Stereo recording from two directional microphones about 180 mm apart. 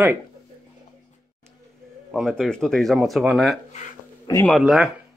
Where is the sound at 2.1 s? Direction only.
Centre (ahead or behind).